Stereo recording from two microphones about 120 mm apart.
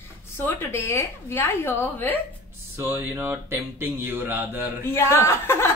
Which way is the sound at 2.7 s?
20° right (ahead or behind).